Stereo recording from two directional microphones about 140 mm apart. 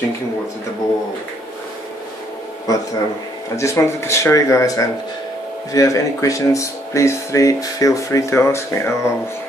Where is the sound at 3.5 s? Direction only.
20° left (ahead or behind).